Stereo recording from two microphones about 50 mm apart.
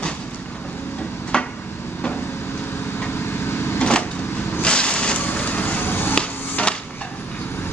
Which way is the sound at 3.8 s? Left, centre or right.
Left.